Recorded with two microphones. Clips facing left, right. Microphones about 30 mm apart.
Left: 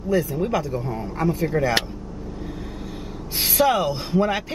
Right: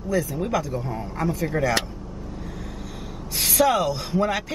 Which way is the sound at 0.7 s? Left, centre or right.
Centre.